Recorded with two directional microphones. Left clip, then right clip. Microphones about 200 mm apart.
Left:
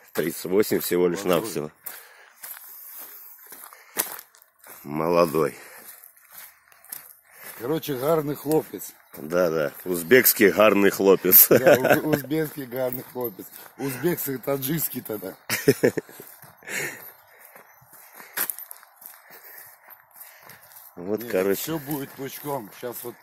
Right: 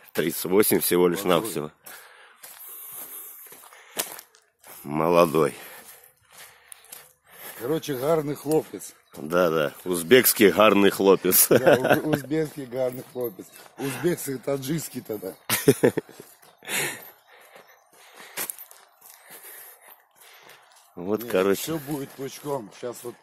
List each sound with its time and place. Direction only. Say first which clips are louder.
0.1 s a sound: right 1 dB; 10° right (ahead or behind); by 3.1 s 10° left (ahead or behind)
4.8 s speech: right 1 dB; 10° right (ahead or behind)
7.3 s a sound: right 1 dB; 15° right (ahead or behind)
7.7 s speech: left 1 dB; 50° left (ahead or behind)
9.1 s speech: right 1 dB; 5° right (ahead or behind)
12.3 s speech: even; 45° left (ahead or behind)
15.4 s speech: right 1 dB; 10° right (ahead or behind)
16.6 s sigh: right 2 dB; 10° right (ahead or behind)
21.0 s speech: right 1 dB; 10° right (ahead or behind)
21.6 s speech: even; 50° left (ahead or behind)